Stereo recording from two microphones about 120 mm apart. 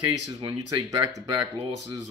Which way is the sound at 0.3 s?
35° right (ahead or behind).